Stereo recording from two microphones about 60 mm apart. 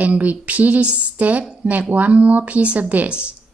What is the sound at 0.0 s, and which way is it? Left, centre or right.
Speech, right.